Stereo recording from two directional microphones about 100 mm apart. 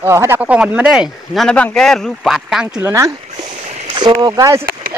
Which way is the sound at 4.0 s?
45° right (ahead or behind).